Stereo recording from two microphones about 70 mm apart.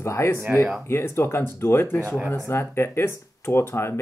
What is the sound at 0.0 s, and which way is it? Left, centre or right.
Speech, left.